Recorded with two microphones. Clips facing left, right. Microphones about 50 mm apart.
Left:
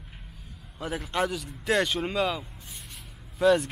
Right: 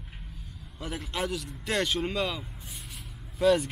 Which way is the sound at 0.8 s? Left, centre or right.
Centre.